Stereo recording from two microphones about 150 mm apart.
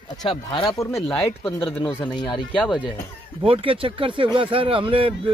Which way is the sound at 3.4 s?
35° right (ahead or behind).